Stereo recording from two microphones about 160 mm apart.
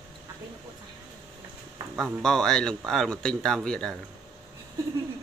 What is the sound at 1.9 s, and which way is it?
Speech, centre (ahead or behind).